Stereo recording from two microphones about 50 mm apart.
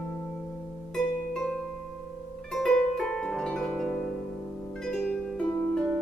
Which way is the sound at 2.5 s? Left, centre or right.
Centre.